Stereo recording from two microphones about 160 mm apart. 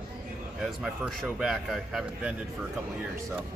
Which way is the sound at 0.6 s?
5° right (ahead or behind).